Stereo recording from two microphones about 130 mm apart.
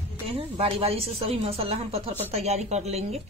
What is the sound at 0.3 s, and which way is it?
Speech, 45° right (ahead or behind).